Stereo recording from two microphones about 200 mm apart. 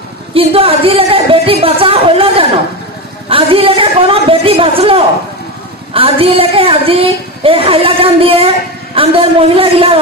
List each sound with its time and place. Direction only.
0.3 s a woman's voice: 30° right (ahead or behind)